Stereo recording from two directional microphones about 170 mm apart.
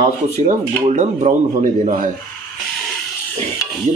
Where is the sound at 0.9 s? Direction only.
40° right (ahead or behind).